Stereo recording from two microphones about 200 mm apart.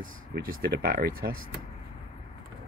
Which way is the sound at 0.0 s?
45° right (ahead or behind).